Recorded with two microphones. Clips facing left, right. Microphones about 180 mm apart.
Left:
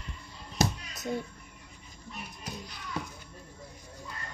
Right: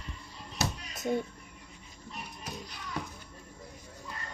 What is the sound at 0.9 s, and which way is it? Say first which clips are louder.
Music: right 3 dB; 25° right (ahead or behind).